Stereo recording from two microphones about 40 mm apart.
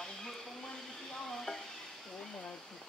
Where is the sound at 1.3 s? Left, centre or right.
Centre.